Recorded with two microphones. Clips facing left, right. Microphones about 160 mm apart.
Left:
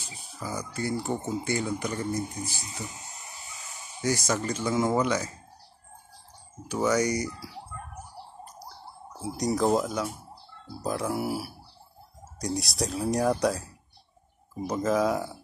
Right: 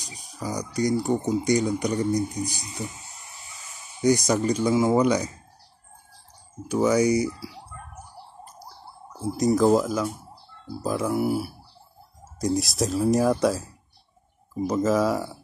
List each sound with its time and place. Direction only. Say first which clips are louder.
0.0 s a sound: right 4 dB; 15° right (ahead or behind)
1.2 s speech: right 7 dB; 15° right (ahead or behind)
4.0 s speech: right 7 dB; 15° right (ahead or behind)
6.7 s speech: right 5 dB; 10° right (ahead or behind)
9.2 s speech: right 6 dB; centre (ahead or behind)
14.7 s speech: right 3 dB; centre (ahead or behind)